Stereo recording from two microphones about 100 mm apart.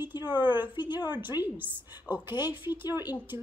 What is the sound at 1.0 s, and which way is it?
Speech, 20° right (ahead or behind).